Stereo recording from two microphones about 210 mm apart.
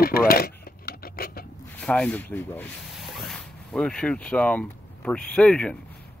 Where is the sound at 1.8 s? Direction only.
5° left (ahead or behind).